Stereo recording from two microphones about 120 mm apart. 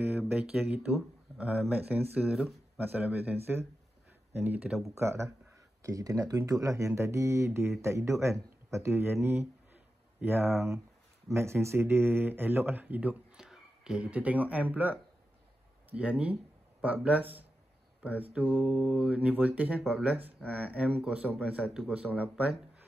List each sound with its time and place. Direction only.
0.2 s speech: 15° right (ahead or behind)
4.6 s speech: centre (ahead or behind)
4.9 s speech: 20° right (ahead or behind)